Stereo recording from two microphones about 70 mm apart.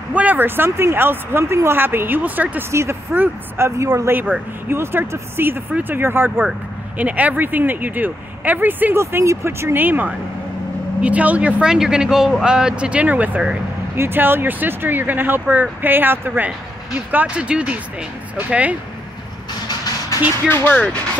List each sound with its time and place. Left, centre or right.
0.1 s speech: right
2.7 s speech: right
3.1 s speech: right
3.6 s speech: right
4.1 s speech: right
7.0 s speech: right
8.9 s speech: right
20.4 s speech: left